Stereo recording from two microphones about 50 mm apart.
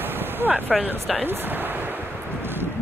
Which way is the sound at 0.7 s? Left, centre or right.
Centre.